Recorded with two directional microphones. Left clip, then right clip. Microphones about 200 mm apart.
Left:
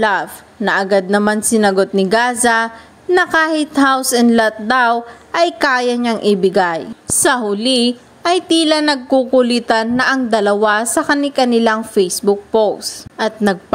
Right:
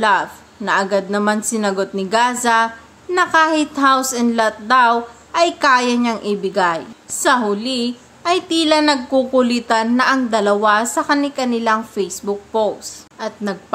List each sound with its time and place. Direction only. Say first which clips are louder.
0.0 s a woman's voice: even; 30° left (ahead or behind)